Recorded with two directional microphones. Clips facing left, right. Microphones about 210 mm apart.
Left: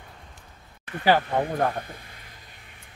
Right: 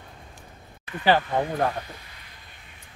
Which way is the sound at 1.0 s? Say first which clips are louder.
Even; 10° left (ahead or behind).